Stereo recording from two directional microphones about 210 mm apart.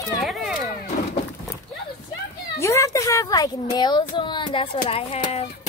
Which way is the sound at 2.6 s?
15° left (ahead or behind).